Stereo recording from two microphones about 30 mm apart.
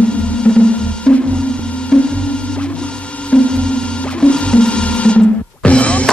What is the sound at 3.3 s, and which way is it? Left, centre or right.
Music, left.